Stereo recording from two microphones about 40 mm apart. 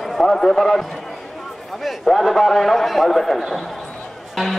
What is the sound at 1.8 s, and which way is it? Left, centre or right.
Speech, centre.